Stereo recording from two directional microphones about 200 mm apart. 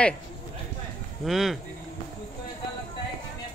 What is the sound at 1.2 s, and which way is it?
Speech, centre (ahead or behind).